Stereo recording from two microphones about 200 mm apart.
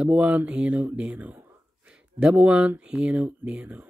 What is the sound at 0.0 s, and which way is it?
Speech, 5° right (ahead or behind).